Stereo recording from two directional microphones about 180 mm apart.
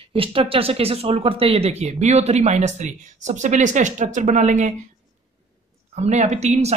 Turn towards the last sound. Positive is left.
turn(degrees=-40)  # may be behind; listen again after turning